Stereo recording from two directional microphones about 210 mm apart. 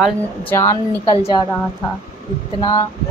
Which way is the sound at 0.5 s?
15° left (ahead or behind).